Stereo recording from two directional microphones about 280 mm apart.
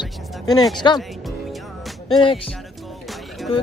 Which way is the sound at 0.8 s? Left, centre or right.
Centre.